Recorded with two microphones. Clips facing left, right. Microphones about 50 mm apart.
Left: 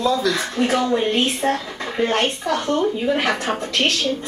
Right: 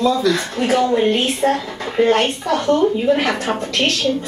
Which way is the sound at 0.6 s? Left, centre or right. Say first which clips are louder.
Right 5 dB; right.